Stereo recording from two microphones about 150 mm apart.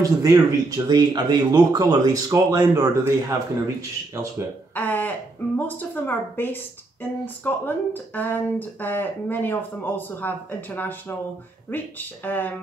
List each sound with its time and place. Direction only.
0.0 s speech: 25° right (ahead or behind)
4.7 s a woman's voice: 10° left (ahead or behind)